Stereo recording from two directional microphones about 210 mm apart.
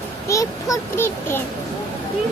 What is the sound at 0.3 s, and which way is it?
A child's voice, 15° left (ahead or behind).